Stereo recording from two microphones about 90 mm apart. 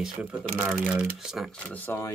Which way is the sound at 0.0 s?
10° right (ahead or behind).